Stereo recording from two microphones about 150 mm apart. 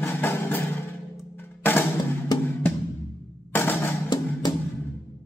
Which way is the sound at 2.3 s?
25° left (ahead or behind).